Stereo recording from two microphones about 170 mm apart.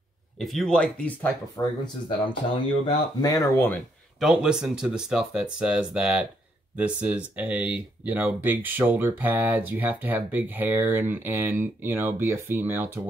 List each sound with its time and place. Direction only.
0.4 s speech: centre (ahead or behind)
1.6 s speech: 25° left (ahead or behind)
4.2 s speech: 5° right (ahead or behind)